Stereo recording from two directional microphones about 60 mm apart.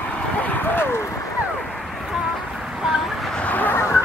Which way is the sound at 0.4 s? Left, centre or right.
Left.